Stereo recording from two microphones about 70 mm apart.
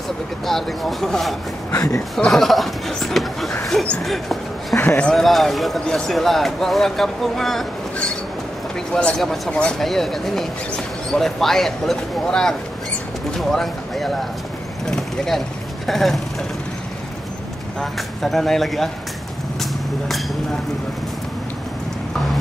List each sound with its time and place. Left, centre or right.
0.5 s speech: centre
1.7 s speech: left
2.1 s speech: centre
4.7 s a man's voice: left
5.0 s speech: centre
8.7 s speech: centre
17.9 s speech: centre
19.6 s vehicle: centre